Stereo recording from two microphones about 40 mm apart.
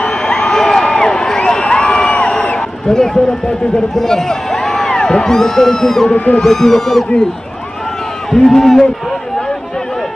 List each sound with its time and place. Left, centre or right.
0.0 s crowd: centre
1.4 s crowd: left
2.5 s a sound: centre
3.9 s a man's voice: centre
6.1 s a man's voice: left
6.4 s a man's voice: centre
8.3 s a man's voice: centre